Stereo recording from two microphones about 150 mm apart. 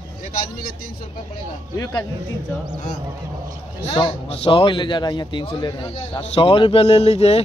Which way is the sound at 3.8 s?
40° left (ahead or behind).